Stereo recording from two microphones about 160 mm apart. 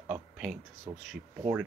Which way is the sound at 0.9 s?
15° right (ahead or behind).